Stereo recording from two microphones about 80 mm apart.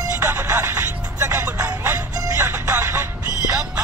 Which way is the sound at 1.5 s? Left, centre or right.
Right.